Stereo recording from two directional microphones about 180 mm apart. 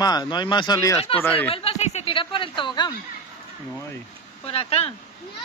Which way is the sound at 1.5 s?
35° left (ahead or behind).